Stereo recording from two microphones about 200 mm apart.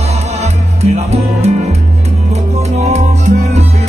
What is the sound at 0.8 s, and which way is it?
Music, 30° right (ahead or behind).